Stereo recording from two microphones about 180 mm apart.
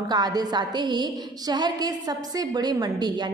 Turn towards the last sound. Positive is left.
turn(degrees=-25)  # may be behind; listen again after turning